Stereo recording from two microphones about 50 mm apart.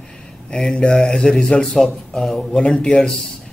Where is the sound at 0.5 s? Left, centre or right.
Centre.